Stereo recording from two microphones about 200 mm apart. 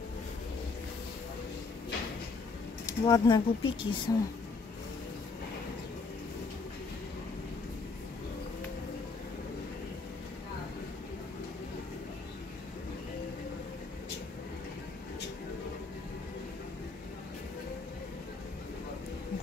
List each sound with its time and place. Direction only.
3.0 s speech: 20° left (ahead or behind)